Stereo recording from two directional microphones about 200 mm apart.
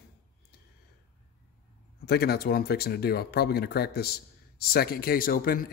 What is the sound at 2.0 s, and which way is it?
Speech, 55° left (ahead or behind).